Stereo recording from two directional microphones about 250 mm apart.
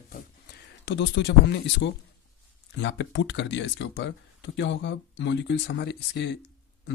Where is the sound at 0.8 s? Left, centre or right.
Left.